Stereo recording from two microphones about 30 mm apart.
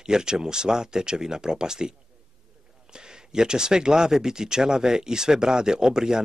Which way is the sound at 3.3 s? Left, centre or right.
Right.